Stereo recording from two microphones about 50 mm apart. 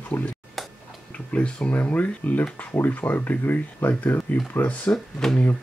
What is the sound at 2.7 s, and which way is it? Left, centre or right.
Speech, left.